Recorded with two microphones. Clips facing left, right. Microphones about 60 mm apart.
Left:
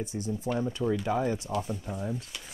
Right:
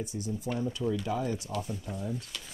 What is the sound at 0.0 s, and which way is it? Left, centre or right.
Speech, left.